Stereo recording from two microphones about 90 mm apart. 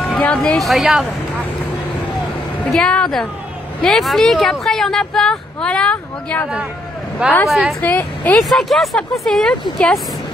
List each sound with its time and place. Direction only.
0.2 s speech: 10° left (ahead or behind)
0.6 s speech: centre (ahead or behind)
2.7 s speech: 10° left (ahead or behind)
7.4 s speech: centre (ahead or behind)
7.8 s speech: 20° left (ahead or behind)
8.4 s speech: centre (ahead or behind)